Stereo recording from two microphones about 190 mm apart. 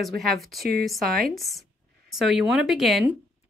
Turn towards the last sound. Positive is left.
turn(degrees=-5)  # may be behind; listen again after turning